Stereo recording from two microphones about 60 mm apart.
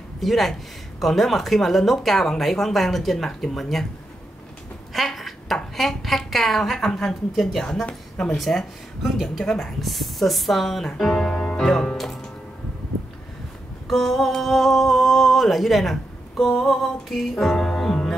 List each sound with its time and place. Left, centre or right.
0.2 s a woman's voice: centre
4.9 s a woman's voice: centre
13.8 s speech: centre